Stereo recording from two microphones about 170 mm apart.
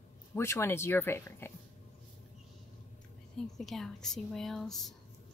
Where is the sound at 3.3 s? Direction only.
Centre (ahead or behind).